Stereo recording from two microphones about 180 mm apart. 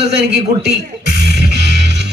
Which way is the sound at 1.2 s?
70° right (ahead or behind).